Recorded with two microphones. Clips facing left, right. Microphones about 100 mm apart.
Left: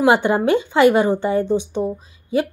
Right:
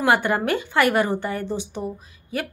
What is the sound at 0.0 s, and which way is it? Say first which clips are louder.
A woman's voice: left 5 dB; 20° left (ahead or behind).